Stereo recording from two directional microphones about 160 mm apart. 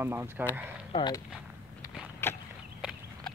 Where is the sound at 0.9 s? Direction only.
25° left (ahead or behind).